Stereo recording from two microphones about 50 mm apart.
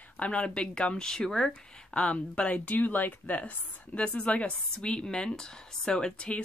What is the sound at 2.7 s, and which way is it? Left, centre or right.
Speech, left.